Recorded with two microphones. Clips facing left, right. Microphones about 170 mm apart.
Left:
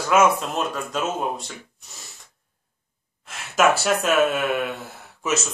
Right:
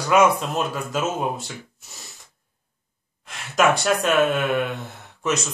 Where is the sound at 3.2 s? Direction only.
Centre (ahead or behind).